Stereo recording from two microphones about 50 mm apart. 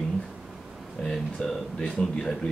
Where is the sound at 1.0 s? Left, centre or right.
Centre.